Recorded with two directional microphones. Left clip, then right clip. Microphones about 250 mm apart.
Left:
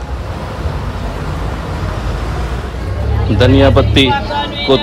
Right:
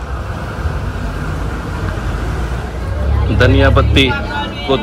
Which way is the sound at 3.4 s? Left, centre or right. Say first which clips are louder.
Left 2 dB; centre.